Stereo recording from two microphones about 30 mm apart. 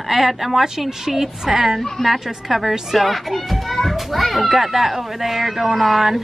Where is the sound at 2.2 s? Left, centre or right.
Centre.